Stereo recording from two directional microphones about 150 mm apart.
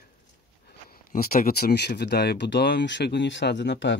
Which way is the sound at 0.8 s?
75° left (ahead or behind).